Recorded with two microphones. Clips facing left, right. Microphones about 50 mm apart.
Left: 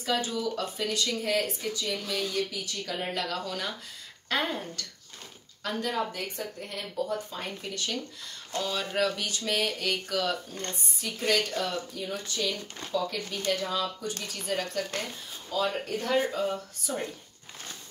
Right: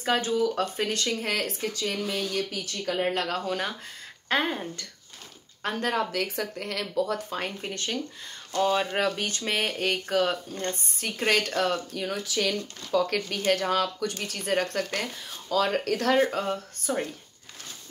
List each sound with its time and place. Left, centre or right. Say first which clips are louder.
0.0 s speech: right 5 dB; right
4.3 s speech: right 3 dB; right
5.6 s speech: right 3 dB; right
6.1 s speech: right 6 dB; right
7.6 s speech: right 2 dB; right
11.0 s a woman's voice: right 2 dB; right
15.5 s speech: right 5 dB; right
16.2 s speech: right 3 dB; right